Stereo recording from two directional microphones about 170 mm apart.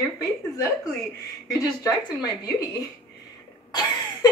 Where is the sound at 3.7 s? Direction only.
25° left (ahead or behind).